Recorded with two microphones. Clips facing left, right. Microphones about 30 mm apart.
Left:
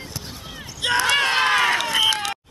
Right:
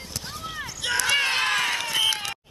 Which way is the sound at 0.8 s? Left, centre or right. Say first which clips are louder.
Left 4 dB; left.